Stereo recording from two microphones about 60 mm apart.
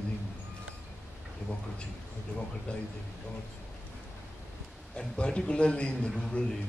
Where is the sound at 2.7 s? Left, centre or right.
Centre.